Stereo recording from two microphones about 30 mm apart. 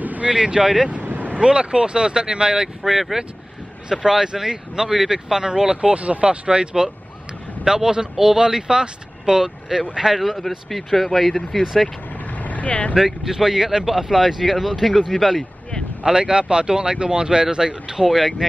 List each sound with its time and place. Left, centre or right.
0.3 s speech: right
1.0 s vehicle: right
1.4 s speech: right
2.8 s speech: centre
3.9 s speech: centre
5.8 s speech: right
6.2 s speech: right; by 11.6 s centre
12.3 s vehicle: left
12.9 s speech: centre
16.0 s speech: right
18.0 s speech: centre